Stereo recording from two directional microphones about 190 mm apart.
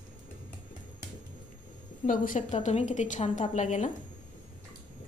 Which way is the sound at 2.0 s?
45° left (ahead or behind).